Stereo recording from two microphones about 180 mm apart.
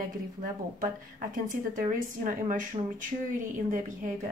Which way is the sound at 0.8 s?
45° right (ahead or behind).